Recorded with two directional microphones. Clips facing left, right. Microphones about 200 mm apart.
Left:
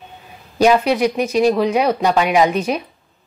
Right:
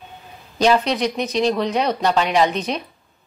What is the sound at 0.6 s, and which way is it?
A woman's voice, 10° left (ahead or behind).